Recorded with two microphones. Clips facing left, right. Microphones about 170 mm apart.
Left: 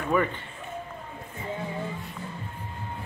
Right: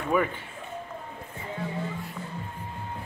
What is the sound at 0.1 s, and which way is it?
Speech, 10° right (ahead or behind).